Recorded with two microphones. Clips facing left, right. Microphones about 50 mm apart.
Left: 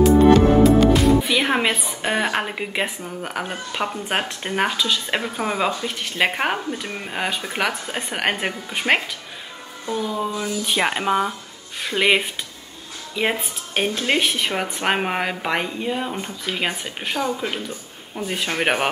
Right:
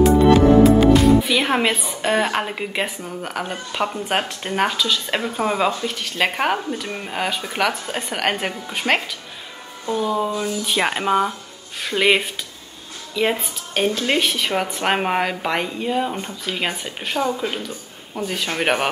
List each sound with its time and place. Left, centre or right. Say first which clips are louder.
0.0 s music: even; centre
1.3 s a woman's voice: right 1 dB; centre
10.0 s speech: right 5 dB; centre
10.7 s a woman's voice: right 1 dB; centre
18.2 s a woman's voice: even; centre